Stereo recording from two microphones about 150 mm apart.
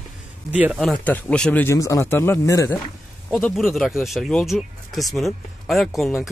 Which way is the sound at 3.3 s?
10° left (ahead or behind).